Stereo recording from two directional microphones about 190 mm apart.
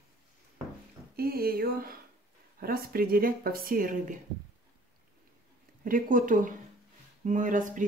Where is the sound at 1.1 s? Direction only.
50° right (ahead or behind).